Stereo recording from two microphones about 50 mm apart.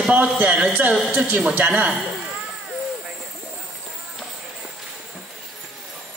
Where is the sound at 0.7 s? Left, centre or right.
Right.